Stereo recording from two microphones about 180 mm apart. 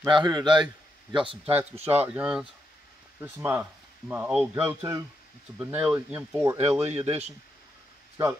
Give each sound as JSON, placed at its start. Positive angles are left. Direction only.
{"t": 0.0, "sound": "a man's voice", "side_deg": -25}
{"t": 2.0, "sound": "speech", "side_deg": -10}
{"t": 6.6, "sound": "speech", "side_deg": -35}